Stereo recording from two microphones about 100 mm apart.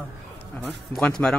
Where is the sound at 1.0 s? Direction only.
10° left (ahead or behind).